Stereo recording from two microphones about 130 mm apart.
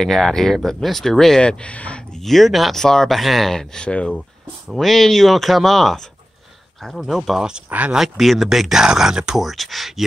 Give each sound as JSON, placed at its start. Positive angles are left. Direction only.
{"t": 0.0, "sound": "speech", "side_deg": 5}